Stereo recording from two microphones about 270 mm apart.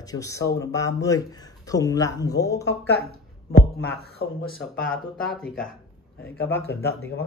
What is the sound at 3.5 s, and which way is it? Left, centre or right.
Speech, left.